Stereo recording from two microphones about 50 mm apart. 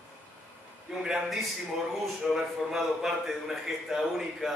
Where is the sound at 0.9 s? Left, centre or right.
Centre.